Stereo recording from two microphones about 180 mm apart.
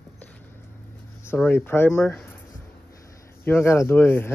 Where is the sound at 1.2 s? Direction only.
10° left (ahead or behind).